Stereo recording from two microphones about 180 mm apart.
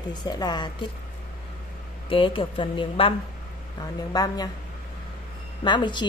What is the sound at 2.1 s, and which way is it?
A woman's voice, 30° left (ahead or behind).